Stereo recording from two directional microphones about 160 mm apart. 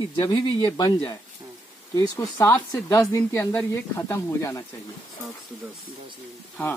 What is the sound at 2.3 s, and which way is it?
Speech, 20° left (ahead or behind).